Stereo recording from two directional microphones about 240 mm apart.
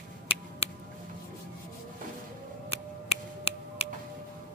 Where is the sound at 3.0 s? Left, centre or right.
Left.